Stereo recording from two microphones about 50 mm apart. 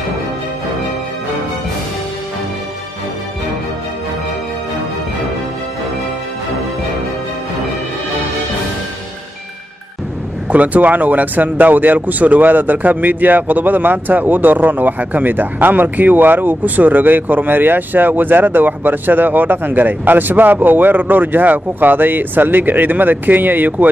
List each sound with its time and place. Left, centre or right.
10.5 s speech: right